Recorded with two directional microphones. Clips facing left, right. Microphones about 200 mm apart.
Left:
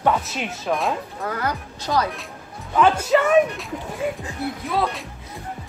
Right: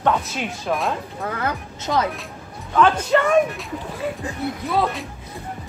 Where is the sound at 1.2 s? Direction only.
25° right (ahead or behind).